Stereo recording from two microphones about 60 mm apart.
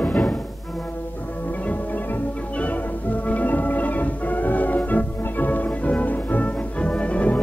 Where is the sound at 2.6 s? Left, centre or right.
Left.